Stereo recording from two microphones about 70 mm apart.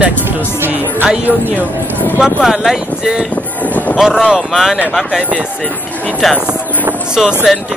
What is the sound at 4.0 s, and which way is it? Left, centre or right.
Speech, centre.